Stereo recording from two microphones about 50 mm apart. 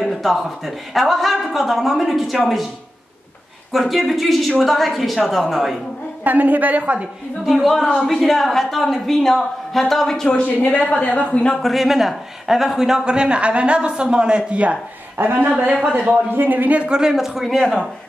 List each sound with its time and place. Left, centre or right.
0.0 s speech: centre
3.7 s speech: centre
6.2 s speech: right
7.4 s speech: centre
10.4 s a woman's voice: left
11.6 s speech: centre; by 14.8 s right
15.1 s speech: right
17.1 s speech: centre